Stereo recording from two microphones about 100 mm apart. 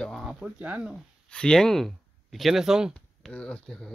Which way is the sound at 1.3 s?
10° left (ahead or behind).